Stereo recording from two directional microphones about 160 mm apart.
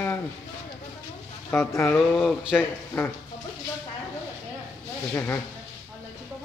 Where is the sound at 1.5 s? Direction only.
15° left (ahead or behind).